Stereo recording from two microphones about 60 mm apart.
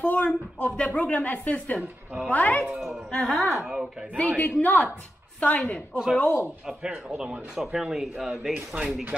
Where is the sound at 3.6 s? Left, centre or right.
Centre.